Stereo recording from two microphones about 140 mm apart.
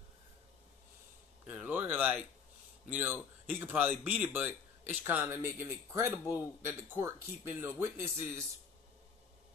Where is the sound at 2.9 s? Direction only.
10° right (ahead or behind).